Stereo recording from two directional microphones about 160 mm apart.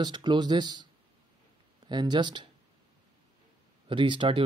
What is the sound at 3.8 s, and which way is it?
Speech, 30° right (ahead or behind).